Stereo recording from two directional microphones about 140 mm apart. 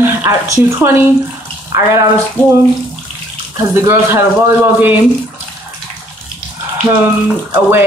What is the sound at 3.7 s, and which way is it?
Speech, 20° right (ahead or behind).